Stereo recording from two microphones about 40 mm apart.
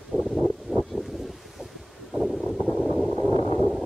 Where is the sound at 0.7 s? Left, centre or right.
Right.